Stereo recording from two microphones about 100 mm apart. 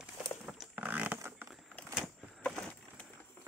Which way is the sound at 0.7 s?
15° right (ahead or behind).